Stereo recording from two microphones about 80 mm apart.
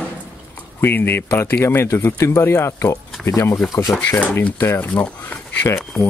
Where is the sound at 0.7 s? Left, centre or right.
Left.